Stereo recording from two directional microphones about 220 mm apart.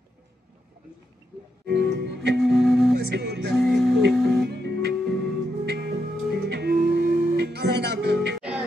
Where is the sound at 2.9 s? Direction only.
50° right (ahead or behind).